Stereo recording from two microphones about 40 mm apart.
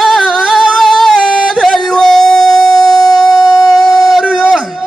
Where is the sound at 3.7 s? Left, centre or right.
Centre.